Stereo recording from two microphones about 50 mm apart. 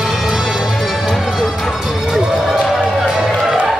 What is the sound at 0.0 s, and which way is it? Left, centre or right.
Music, centre.